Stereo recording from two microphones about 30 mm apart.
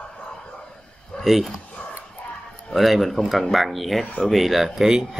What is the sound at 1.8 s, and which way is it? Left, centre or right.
Dog, left.